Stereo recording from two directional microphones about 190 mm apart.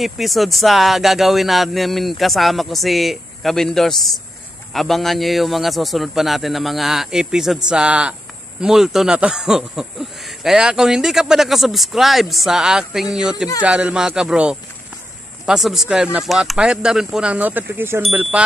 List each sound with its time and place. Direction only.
0.0 s a man's voice: centre (ahead or behind)